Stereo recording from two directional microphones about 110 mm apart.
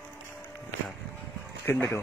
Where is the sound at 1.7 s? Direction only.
25° left (ahead or behind).